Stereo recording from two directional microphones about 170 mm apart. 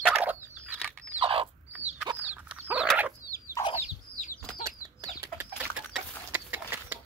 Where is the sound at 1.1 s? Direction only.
35° right (ahead or behind).